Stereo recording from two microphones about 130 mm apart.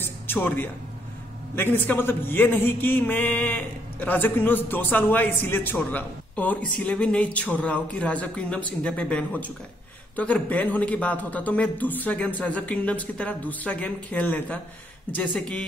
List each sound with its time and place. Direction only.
0.0 s music: 15° left (ahead or behind)
1.5 s a man's voice: 15° left (ahead or behind)